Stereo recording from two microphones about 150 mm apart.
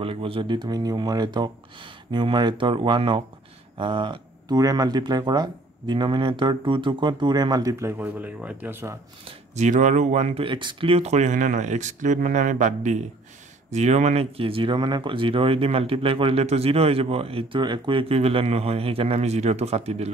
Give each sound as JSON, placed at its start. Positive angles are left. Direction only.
{"t": 0.0, "sound": "speech", "side_deg": -35}
{"t": 8.0, "sound": "speech", "side_deg": -10}
{"t": 9.6, "sound": "speech", "side_deg": -55}